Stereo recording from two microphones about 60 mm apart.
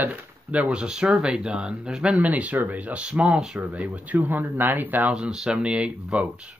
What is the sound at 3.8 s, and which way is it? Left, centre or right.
Speech, right.